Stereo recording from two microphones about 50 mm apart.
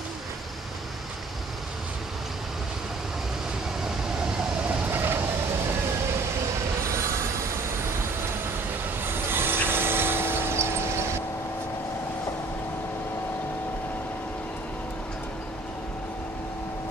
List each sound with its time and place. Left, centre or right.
4.8 s vehicle: right
9.0 s vehicle: right